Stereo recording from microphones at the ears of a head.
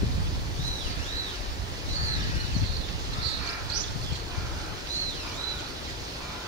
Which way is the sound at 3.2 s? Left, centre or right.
Right.